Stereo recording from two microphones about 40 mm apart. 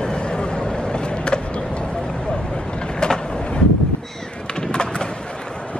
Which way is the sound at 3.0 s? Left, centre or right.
Centre.